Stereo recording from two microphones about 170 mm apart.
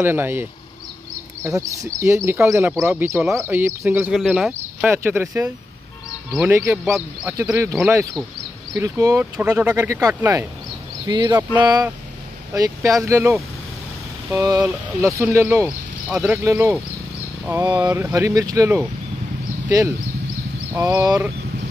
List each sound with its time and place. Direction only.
0.0 s speech: 15° right (ahead or behind)
4.1 s speech: centre (ahead or behind)
4.5 s speech: 15° right (ahead or behind)
6.8 s speech: centre (ahead or behind)
7.3 s speech: 15° right (ahead or behind)
17.7 s speech: 15° right (ahead or behind)
20.8 s speech: 25° right (ahead or behind)